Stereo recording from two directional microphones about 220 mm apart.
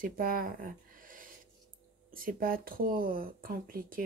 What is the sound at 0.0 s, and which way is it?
Speech, 40° right (ahead or behind).